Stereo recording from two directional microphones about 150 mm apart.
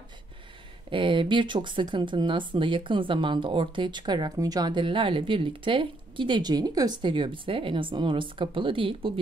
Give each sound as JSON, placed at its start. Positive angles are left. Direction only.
{"t": 0.8, "sound": "speech", "side_deg": -35}